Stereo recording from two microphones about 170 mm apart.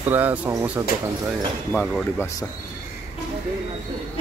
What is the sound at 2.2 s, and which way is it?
Speech, 20° left (ahead or behind).